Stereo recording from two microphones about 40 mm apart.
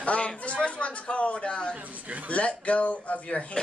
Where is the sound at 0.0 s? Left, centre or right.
Left.